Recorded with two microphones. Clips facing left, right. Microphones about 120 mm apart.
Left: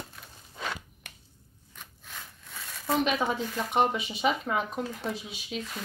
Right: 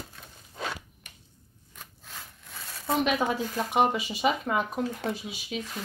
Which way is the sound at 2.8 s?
Centre (ahead or behind).